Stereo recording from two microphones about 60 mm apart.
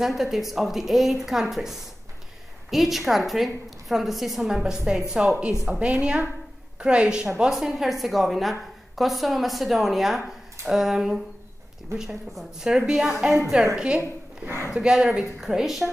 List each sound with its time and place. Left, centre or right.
0.0 s a woman's voice: centre